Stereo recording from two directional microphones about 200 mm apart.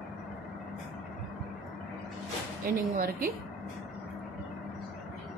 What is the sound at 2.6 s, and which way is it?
Speech, 45° right (ahead or behind).